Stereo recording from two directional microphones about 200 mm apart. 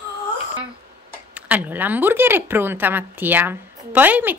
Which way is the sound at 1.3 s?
5° right (ahead or behind).